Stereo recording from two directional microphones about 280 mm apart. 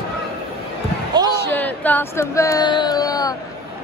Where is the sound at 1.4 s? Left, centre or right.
Centre.